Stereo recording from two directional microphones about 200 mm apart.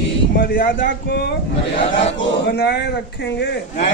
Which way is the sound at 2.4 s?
55° left (ahead or behind).